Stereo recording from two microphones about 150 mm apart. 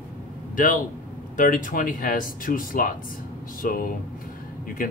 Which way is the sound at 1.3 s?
65° left (ahead or behind).